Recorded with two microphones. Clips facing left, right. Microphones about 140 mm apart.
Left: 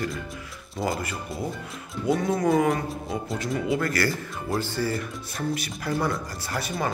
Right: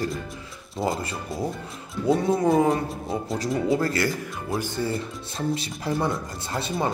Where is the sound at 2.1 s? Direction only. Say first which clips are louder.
Right 2 dB; 30° right (ahead or behind).